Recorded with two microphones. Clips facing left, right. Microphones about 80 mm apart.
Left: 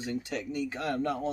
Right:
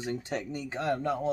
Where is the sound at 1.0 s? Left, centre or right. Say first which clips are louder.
Even; centre.